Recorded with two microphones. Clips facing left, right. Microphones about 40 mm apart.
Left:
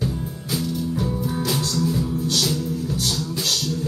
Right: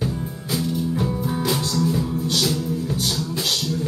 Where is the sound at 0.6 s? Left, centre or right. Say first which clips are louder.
Right 2 dB; centre.